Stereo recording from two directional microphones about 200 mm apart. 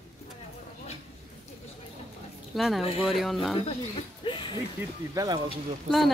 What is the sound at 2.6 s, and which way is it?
Speech, centre (ahead or behind).